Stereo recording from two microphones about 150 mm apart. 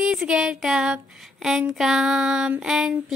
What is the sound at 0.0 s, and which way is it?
Speech, 5° right (ahead or behind).